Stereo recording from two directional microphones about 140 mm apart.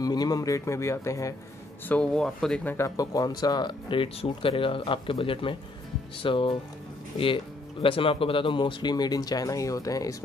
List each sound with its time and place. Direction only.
0.0 s speech: 25° left (ahead or behind)
1.9 s speech: 5° left (ahead or behind)
2.6 s speech: 15° left (ahead or behind)
3.0 s speech: 25° left (ahead or behind)